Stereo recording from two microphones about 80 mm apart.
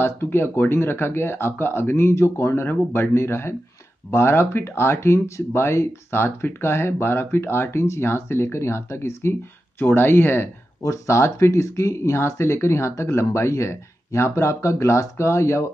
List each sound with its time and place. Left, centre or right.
0.0 s speech: left
10.8 s speech: left